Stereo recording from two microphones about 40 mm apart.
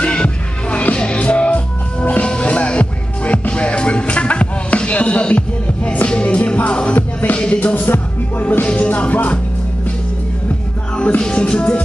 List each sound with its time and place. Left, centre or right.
0.0 s music: left
7.0 s music: left
8.6 s music: left
11.1 s music: left